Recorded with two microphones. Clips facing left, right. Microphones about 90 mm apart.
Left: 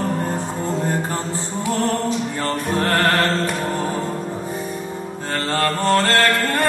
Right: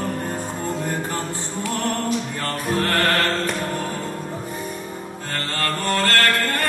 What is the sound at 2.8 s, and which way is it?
Music, 30° left (ahead or behind).